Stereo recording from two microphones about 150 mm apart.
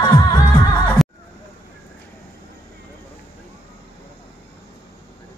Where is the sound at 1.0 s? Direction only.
Centre (ahead or behind).